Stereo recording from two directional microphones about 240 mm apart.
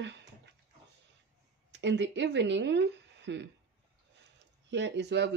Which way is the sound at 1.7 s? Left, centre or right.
Right.